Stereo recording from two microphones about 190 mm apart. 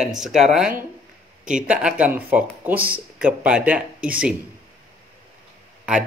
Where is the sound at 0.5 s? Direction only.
5° right (ahead or behind).